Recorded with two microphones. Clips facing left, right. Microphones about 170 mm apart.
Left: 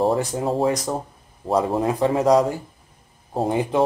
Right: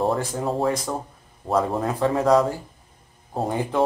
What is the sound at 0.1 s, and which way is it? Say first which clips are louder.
Speech: left 3 dB; 20° left (ahead or behind).